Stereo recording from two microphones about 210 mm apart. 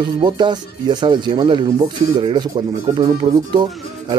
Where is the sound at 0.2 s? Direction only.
20° right (ahead or behind).